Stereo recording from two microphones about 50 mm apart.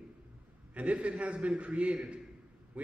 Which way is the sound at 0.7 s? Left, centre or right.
Right.